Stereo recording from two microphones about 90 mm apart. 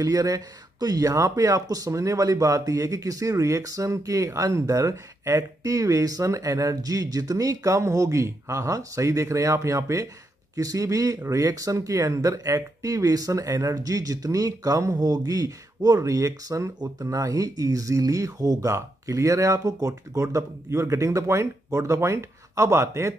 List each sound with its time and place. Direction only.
0.0 s speech: 45° right (ahead or behind)